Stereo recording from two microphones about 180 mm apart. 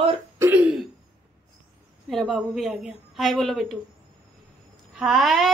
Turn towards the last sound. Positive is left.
turn(degrees=0)  # may be behind; listen again after turning